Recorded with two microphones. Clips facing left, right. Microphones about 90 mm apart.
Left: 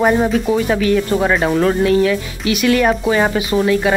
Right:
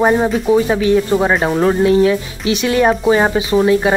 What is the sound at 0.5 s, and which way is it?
Speech, 20° right (ahead or behind).